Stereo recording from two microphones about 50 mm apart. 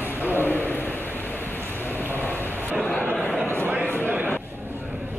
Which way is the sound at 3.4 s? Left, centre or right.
Right.